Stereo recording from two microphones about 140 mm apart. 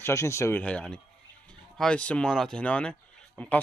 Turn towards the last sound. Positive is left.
turn(degrees=5)  # may be behind; listen again after turning